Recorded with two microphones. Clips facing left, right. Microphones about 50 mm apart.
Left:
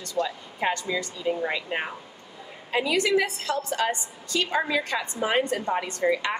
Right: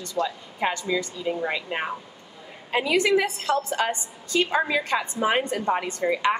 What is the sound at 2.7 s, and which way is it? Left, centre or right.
A woman's voice, right.